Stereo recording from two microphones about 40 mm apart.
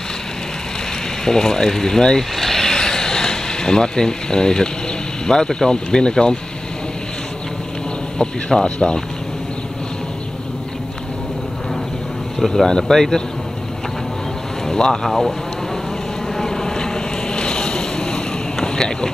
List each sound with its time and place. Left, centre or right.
1.2 s speech: centre
2.3 s vehicle: centre
5.2 s speech: centre
8.2 s speech: centre
12.4 s speech: centre
12.6 s speech: centre
14.7 s speech: centre
15.0 s speech: centre
16.3 s vehicle: centre
18.6 s boat: centre